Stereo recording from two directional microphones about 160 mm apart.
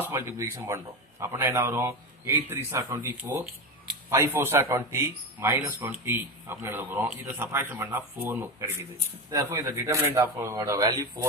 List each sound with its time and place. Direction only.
0.1 s speech: 15° right (ahead or behind)